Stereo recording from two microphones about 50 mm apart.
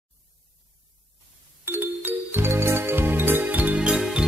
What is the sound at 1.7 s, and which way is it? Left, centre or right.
Music, right.